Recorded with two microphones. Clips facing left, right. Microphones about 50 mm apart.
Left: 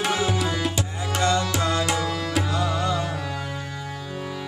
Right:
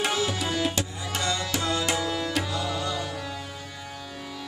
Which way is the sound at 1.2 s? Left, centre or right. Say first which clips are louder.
Left 8 dB; left.